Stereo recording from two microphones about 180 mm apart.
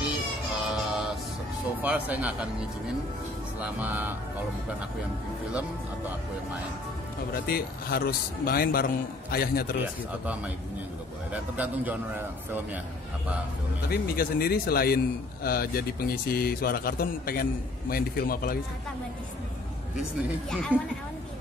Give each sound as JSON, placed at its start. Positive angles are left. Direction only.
{"t": 0.7, "sound": "music", "side_deg": 0}
{"t": 1.8, "sound": "a man's voice", "side_deg": -10}
{"t": 3.8, "sound": "a man's voice", "side_deg": -10}
{"t": 7.4, "sound": "a man's voice", "side_deg": 55}
{"t": 11.3, "sound": "a man's voice", "side_deg": -10}
{"t": 13.8, "sound": "a man's voice", "side_deg": 60}
{"t": 20.0, "sound": "speech", "side_deg": 0}